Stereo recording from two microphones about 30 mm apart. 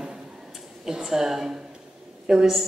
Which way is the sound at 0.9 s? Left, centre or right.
Centre.